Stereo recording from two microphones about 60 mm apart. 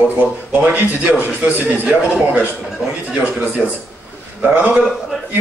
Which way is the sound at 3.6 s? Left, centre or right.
Right.